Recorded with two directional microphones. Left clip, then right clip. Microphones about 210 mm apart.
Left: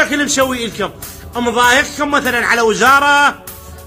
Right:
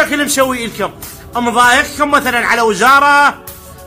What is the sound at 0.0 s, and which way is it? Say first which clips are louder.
A man's voice: right 1 dB; 10° right (ahead or behind).